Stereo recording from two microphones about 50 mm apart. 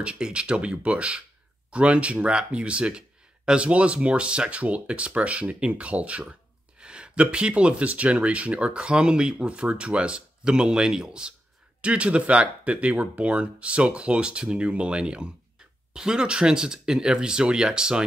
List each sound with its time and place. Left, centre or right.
0.0 s speech: right